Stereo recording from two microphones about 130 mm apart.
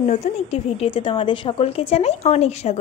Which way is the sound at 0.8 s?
40° left (ahead or behind).